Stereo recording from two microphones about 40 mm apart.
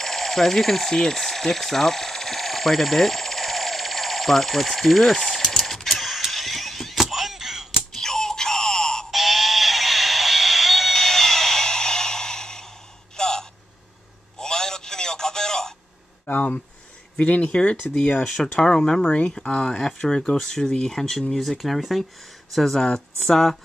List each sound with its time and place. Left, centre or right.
0.0 s speech: centre
5.1 s mechanisms: centre
7.9 s wail: centre
9.1 s music: centre
11.0 s a sound: centre
14.4 s telephone: centre
16.3 s a sound: left
17.2 s speech: left
18.2 s speech: centre
19.0 s speech: left
19.4 s speech: centre